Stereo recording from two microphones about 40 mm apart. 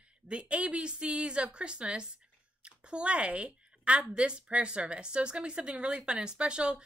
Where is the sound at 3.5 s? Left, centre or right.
Right.